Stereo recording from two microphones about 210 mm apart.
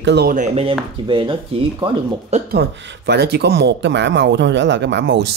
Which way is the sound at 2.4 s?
50° right (ahead or behind).